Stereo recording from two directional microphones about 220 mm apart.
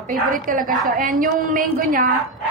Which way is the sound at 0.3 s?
40° right (ahead or behind).